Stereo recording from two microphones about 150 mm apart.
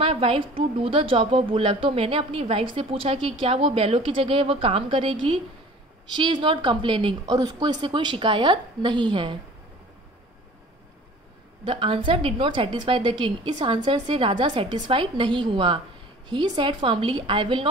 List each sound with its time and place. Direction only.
0.0 s a woman's voice: 40° right (ahead or behind)
11.6 s a woman's voice: 35° right (ahead or behind)